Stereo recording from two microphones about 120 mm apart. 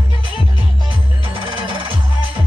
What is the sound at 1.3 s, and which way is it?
Music, 45° right (ahead or behind).